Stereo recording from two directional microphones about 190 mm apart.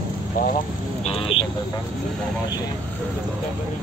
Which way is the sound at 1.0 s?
30° left (ahead or behind).